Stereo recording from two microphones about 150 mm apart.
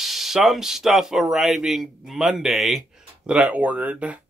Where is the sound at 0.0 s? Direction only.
Centre (ahead or behind).